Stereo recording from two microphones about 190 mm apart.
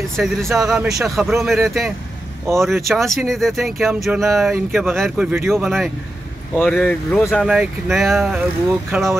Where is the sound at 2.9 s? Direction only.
Centre (ahead or behind).